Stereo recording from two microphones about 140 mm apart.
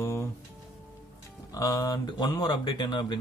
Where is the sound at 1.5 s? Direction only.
25° left (ahead or behind).